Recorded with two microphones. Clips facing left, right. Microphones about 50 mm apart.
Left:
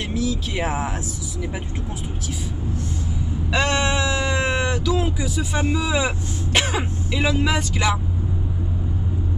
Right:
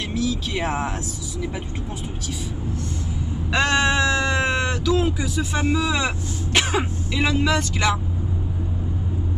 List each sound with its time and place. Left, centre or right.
0.1 s speech: centre
3.8 s speech: centre